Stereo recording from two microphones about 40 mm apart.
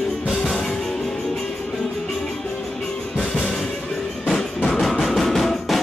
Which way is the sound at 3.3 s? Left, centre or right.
Centre.